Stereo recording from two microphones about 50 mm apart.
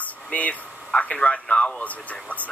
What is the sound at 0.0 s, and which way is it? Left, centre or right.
A man's voice, left.